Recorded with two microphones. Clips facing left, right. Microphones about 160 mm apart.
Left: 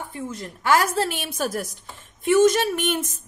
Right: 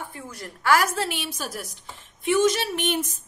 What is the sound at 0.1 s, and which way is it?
Speech, 20° left (ahead or behind).